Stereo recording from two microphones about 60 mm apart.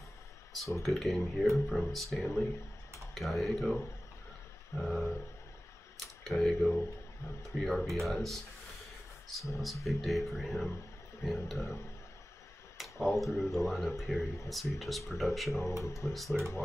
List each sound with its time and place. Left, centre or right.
0.8 s speech: centre
4.8 s speech: centre
6.2 s speech: centre
12.7 s speech: centre
15.7 s speech: left
16.1 s speech: centre